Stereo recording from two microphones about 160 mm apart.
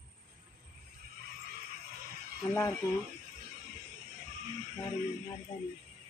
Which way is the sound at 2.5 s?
15° left (ahead or behind).